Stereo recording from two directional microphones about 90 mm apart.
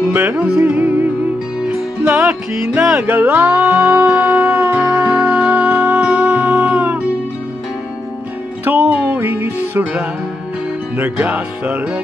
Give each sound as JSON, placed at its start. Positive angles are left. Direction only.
{"t": 0.0, "sound": "music", "side_deg": -15}
{"t": 4.7, "sound": "music", "side_deg": -5}
{"t": 5.0, "sound": "music", "side_deg": -25}
{"t": 8.6, "sound": "music", "side_deg": -20}